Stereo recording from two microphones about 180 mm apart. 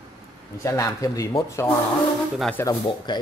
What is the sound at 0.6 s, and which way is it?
Speech, 20° left (ahead or behind).